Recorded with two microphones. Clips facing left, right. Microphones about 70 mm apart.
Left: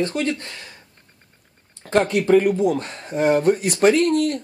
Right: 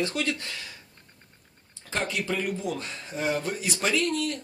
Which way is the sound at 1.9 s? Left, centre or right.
Left.